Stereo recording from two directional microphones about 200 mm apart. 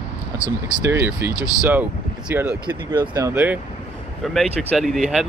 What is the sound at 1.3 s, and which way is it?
Speech, 20° left (ahead or behind).